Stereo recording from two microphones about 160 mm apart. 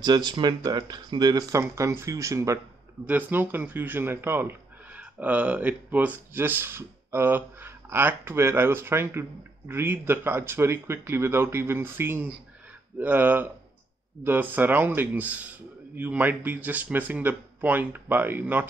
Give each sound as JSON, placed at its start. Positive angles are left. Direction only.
{"t": 0.0, "sound": "speech", "side_deg": -25}